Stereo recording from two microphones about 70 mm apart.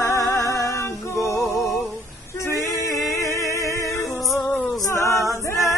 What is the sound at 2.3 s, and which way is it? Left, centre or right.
Male singing, left.